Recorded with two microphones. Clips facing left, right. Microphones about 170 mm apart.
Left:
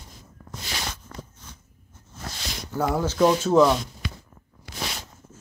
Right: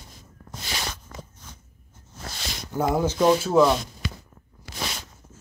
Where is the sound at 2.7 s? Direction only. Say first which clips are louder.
Right 1 dB; 15° right (ahead or behind).